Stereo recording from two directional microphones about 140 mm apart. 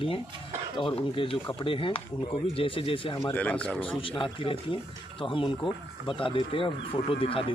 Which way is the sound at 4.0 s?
40° left (ahead or behind).